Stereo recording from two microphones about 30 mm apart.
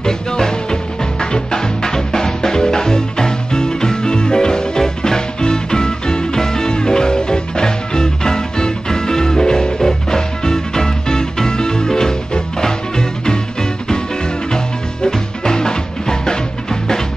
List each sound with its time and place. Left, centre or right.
0.0 s music: left
15.0 s music: left